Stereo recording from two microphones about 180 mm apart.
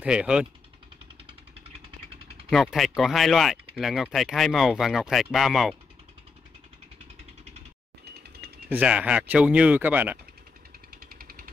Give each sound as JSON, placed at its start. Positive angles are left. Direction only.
{"t": 0.0, "sound": "speech", "side_deg": -5}
{"t": 2.5, "sound": "speech", "side_deg": 0}
{"t": 8.6, "sound": "speech", "side_deg": -10}
{"t": 11.0, "sound": "jackhammer", "side_deg": -55}